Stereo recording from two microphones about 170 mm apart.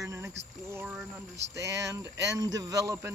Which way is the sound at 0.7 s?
5° right (ahead or behind).